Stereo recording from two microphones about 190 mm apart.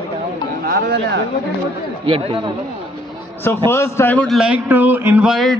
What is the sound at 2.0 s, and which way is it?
Speech, 25° right (ahead or behind).